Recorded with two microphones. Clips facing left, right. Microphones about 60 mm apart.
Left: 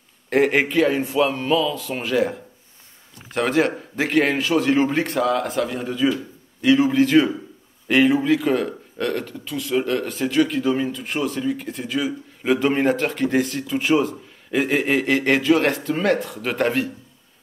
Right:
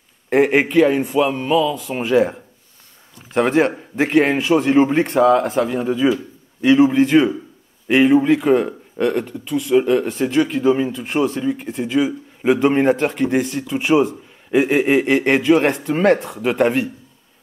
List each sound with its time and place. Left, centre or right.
0.3 s a man's voice: centre
16.3 s a man's voice: centre